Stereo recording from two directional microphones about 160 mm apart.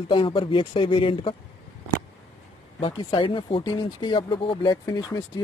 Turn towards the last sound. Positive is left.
turn(degrees=25)  # may be behind; listen again after turning